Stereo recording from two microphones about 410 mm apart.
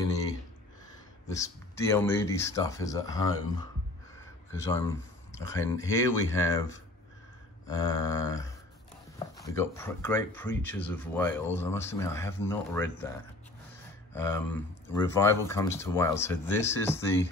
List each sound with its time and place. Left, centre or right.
1.3 s speech: centre
7.6 s speech: centre